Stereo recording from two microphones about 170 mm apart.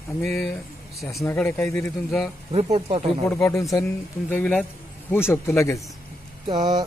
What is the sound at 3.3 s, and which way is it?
Speech, 15° left (ahead or behind).